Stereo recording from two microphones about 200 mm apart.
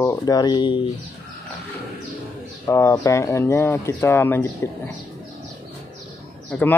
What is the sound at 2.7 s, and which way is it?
Speech, 15° left (ahead or behind).